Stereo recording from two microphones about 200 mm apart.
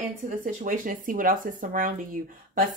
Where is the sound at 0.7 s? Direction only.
40° right (ahead or behind).